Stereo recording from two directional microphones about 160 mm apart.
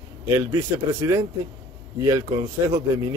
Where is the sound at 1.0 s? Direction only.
20° right (ahead or behind).